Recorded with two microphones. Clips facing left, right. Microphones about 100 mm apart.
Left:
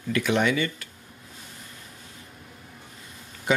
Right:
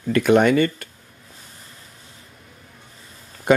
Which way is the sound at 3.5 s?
50° right (ahead or behind).